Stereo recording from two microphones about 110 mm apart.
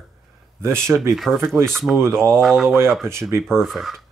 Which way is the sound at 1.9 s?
25° right (ahead or behind).